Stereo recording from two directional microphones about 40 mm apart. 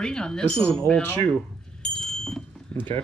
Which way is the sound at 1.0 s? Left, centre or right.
Left.